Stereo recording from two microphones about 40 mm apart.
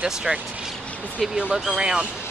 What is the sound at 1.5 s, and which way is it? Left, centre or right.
Speech, centre.